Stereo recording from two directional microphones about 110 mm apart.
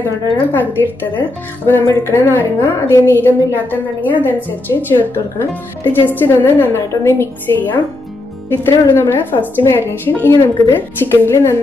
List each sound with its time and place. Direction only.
0.0 s a woman's voice: 15° left (ahead or behind)